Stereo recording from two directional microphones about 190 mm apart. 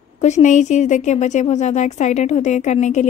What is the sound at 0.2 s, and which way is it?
A woman's voice, 40° left (ahead or behind).